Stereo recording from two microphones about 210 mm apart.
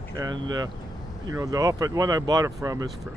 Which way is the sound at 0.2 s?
15° right (ahead or behind).